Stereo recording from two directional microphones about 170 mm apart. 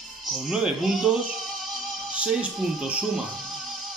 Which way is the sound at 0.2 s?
Centre (ahead or behind).